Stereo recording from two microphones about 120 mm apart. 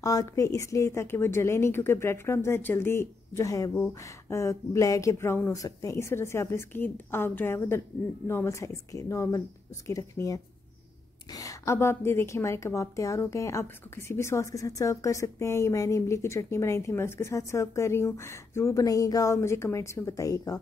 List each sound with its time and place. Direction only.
0.0 s a woman's voice: 30° left (ahead or behind)
3.7 s speech: 15° left (ahead or behind)
4.4 s a woman's voice: 25° left (ahead or behind)